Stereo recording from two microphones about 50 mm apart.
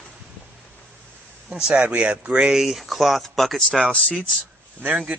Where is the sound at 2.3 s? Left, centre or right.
Centre.